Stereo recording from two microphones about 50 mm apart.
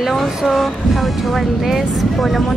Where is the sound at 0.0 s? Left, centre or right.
Centre.